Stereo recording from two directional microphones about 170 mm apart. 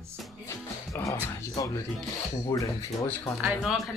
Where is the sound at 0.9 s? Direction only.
15° left (ahead or behind).